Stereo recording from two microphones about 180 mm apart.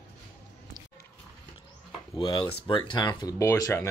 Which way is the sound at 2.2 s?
25° left (ahead or behind).